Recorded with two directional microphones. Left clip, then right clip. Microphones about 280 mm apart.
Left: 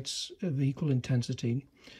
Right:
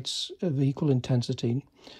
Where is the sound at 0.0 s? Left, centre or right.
Centre.